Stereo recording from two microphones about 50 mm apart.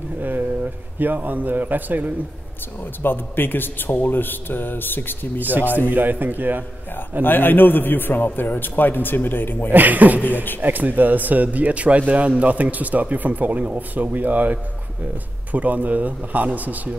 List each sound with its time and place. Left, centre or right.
0.2 s a sound: right
0.9 s speech: right
3.0 s a man's voice: left
5.4 s speech: right
7.2 s a man's voice: left
9.7 s speech: right